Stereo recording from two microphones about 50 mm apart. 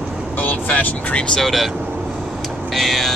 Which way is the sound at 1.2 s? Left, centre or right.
Centre.